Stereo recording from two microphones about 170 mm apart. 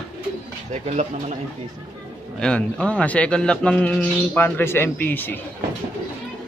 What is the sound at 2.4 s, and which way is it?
A man's voice, 5° left (ahead or behind).